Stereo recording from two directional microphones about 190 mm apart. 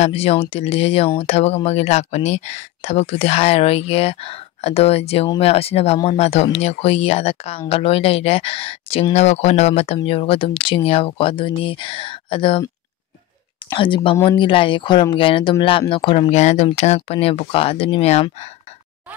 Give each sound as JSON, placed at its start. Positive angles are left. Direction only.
{"t": 0.0, "sound": "speech", "side_deg": 30}
{"t": 13.7, "sound": "speech", "side_deg": 25}